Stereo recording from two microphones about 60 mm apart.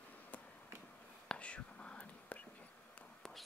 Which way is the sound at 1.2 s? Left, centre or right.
Centre.